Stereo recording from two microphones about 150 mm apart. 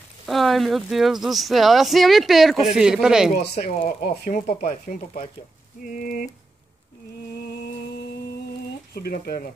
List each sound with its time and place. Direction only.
0.3 s speech: centre (ahead or behind)
3.6 s speech: 75° left (ahead or behind)
8.9 s speech: 90° left